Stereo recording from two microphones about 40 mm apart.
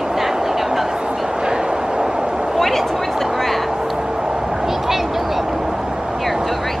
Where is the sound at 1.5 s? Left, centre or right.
Right.